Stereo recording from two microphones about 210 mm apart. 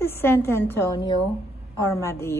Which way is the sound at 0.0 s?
10° left (ahead or behind).